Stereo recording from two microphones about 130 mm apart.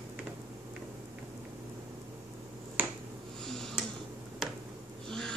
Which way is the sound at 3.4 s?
5° left (ahead or behind).